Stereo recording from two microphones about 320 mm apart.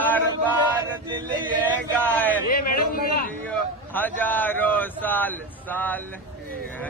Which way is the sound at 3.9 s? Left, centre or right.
Centre.